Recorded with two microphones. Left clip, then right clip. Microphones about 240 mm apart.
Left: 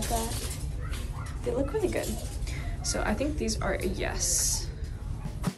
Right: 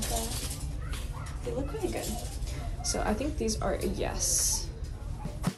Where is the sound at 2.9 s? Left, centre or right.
Centre.